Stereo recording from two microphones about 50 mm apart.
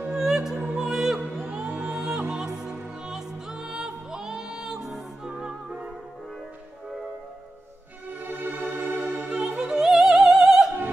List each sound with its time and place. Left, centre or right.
0.1 s music: centre
8.3 s music: right
9.0 s opera: centre